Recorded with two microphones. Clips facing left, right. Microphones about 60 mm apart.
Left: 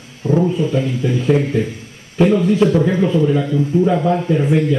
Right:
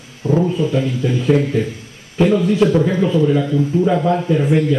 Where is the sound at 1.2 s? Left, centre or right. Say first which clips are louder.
Right 1 dB; centre.